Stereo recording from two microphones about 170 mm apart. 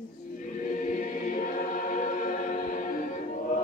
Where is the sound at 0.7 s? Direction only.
50° left (ahead or behind).